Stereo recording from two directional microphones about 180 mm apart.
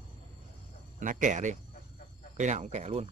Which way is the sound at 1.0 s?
45° right (ahead or behind).